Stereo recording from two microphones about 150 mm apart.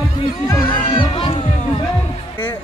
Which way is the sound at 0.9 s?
35° left (ahead or behind).